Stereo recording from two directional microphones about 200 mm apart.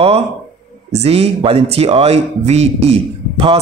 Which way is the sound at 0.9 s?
30° right (ahead or behind).